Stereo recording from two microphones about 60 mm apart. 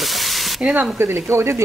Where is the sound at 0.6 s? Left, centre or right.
Right.